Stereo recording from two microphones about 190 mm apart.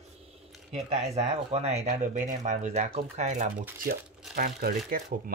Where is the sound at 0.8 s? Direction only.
35° right (ahead or behind).